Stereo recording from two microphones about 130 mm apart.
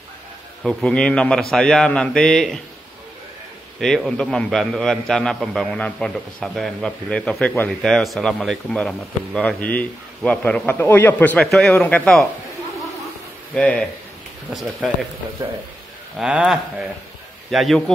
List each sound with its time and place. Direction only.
0.7 s a man's voice: 5° left (ahead or behind)
3.8 s a man's voice: 5° left (ahead or behind)
13.6 s speech: 10° left (ahead or behind)
14.5 s a man's voice: centre (ahead or behind)
16.2 s a man's voice: 5° right (ahead or behind)